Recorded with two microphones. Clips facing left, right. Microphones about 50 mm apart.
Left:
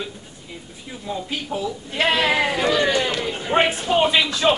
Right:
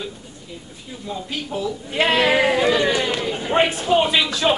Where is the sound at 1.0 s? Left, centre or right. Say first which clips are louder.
Left 1 dB; centre.